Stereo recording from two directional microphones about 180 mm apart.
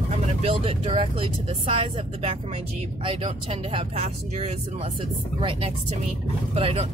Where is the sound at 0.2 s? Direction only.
35° right (ahead or behind).